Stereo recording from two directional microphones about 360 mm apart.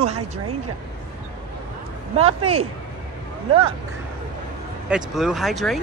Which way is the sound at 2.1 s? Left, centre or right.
Centre.